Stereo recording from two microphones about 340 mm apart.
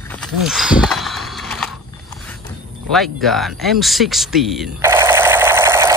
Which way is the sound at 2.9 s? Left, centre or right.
Centre.